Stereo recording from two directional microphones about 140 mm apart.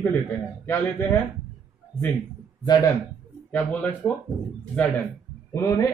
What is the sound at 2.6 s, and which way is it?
Speech, 25° left (ahead or behind).